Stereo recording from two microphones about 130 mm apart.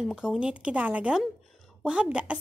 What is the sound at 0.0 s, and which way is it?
A woman's voice, 5° right (ahead or behind).